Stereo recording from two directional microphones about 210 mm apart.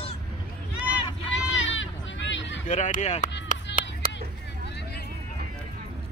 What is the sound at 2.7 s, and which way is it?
Speech, 35° left (ahead or behind).